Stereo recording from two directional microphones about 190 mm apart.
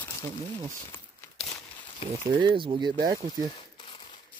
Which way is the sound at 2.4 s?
25° right (ahead or behind).